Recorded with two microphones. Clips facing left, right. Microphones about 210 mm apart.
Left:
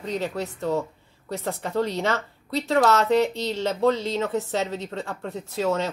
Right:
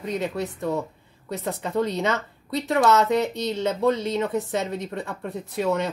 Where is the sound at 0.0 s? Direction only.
15° right (ahead or behind).